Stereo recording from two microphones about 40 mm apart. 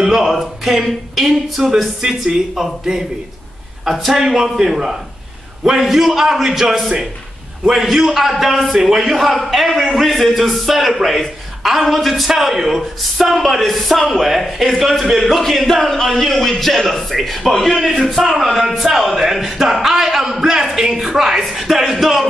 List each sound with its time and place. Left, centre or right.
0.0 s a sound: centre
0.3 s a man's voice: centre
2.0 s a woman's voice: centre
7.6 s a woman's voice: centre